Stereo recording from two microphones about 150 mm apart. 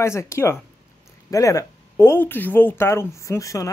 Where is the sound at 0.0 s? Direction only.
20° left (ahead or behind).